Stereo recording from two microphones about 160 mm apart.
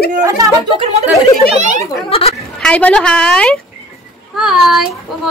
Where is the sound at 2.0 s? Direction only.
40° left (ahead or behind).